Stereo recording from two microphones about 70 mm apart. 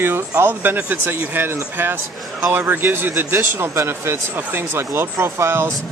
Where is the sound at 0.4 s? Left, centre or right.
Right.